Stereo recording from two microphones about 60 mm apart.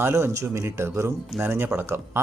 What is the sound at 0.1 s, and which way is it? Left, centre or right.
Speech, right.